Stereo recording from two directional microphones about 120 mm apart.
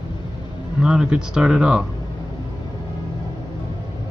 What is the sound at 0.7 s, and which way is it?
Speech, 5° right (ahead or behind).